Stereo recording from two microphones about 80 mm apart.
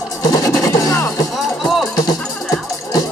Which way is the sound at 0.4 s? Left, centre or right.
Left.